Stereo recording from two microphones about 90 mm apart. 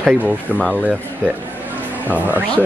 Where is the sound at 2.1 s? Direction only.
20° right (ahead or behind).